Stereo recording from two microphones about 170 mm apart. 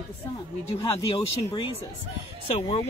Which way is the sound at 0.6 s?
35° left (ahead or behind).